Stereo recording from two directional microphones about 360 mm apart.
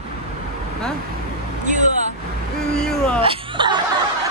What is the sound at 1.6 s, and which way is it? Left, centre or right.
Vehicle, right.